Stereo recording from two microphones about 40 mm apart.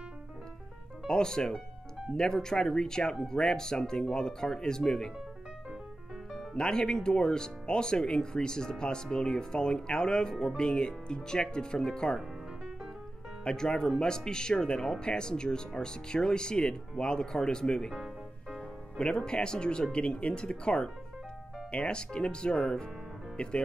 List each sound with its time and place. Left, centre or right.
1.0 s speech: centre
6.5 s speech: centre
13.4 s speech: left